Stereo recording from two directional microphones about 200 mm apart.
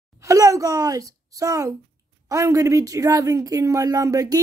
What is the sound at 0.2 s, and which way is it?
Speech, 15° right (ahead or behind).